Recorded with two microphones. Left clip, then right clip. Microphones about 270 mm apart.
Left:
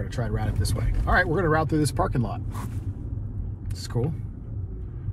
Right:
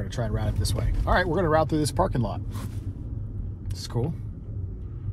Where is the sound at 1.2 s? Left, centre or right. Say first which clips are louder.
Right 1 dB; right.